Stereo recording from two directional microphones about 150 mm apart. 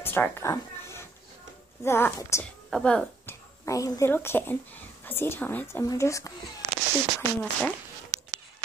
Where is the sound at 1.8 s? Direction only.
15° left (ahead or behind).